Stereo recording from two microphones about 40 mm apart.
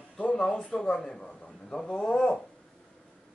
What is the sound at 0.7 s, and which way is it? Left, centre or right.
Speech, centre.